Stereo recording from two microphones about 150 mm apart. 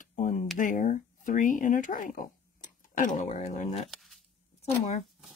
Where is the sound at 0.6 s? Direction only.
60° left (ahead or behind).